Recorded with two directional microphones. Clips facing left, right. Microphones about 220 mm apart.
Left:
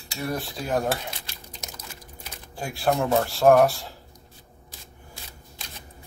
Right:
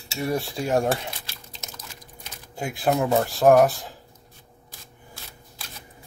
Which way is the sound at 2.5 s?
20° right (ahead or behind).